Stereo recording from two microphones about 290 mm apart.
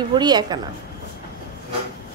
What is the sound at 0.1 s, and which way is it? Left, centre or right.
Speech, centre.